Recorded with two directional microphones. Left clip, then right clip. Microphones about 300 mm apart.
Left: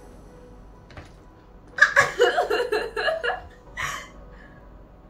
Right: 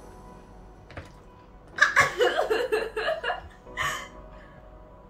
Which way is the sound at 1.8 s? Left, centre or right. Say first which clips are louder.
Left 3 dB; centre.